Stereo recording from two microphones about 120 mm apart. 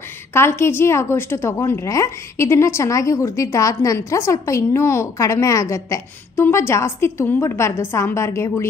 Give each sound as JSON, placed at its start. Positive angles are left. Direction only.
{"t": 0.3, "sound": "a woman's voice", "side_deg": 20}